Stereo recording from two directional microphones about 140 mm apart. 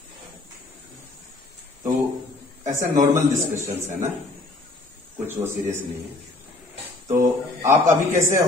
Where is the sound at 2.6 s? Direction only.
20° right (ahead or behind).